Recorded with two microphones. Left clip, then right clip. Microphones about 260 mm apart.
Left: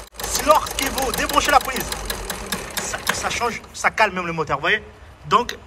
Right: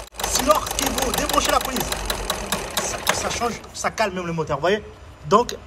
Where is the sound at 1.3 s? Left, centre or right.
Centre.